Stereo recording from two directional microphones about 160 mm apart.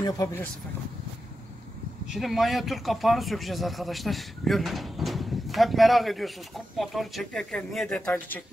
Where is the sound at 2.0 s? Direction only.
Centre (ahead or behind).